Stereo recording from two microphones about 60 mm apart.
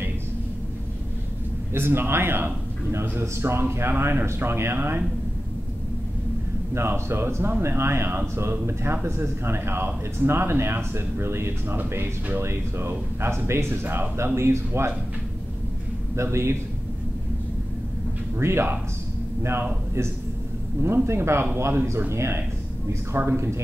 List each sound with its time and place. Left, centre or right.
1.7 s a man's voice: right
6.7 s a man's voice: right
16.2 s a man's voice: right
18.4 s a man's voice: right
20.8 s a man's voice: right